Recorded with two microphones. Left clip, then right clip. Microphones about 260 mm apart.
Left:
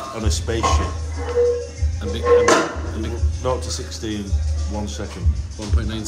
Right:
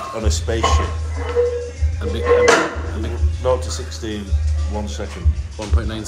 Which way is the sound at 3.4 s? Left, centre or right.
Centre.